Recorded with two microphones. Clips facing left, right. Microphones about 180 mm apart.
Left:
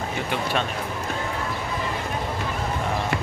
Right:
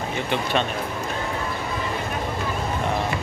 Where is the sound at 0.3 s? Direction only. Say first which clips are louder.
Right 3 dB; 5° left (ahead or behind).